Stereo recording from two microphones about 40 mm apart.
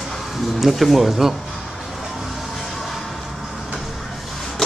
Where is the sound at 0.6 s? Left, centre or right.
Centre.